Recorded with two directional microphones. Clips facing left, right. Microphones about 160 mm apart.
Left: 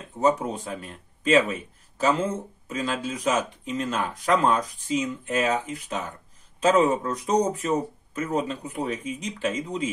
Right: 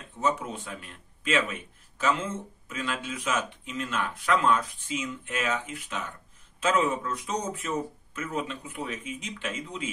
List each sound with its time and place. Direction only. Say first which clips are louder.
0.2 s speech: left 6 dB; 35° left (ahead or behind)